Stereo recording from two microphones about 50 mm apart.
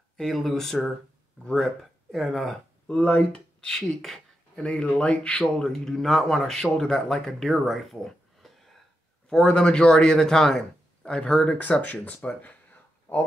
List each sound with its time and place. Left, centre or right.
0.2 s speech: centre
2.9 s speech: centre
5.4 s speech: centre
9.3 s speech: centre
11.9 s speech: left